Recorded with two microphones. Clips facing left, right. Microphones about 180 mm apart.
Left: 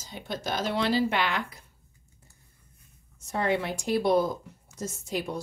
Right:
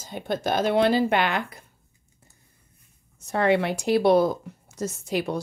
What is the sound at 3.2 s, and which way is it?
Speech, 70° right (ahead or behind).